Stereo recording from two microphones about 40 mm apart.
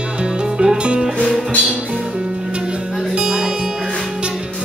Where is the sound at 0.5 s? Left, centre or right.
Right.